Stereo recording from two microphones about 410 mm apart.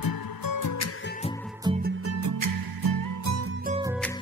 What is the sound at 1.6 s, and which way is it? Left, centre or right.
Music, centre.